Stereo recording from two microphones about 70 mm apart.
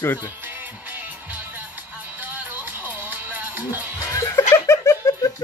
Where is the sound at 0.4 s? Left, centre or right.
Right.